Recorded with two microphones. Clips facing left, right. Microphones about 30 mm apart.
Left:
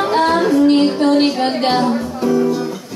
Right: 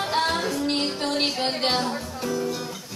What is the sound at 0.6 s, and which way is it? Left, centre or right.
Music, centre.